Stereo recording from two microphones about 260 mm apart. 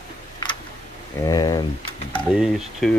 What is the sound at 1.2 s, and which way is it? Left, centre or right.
Speech, centre.